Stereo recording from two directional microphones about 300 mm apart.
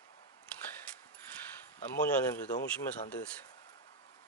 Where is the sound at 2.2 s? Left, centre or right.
Centre.